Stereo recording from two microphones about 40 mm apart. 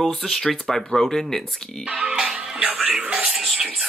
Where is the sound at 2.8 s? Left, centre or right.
Right.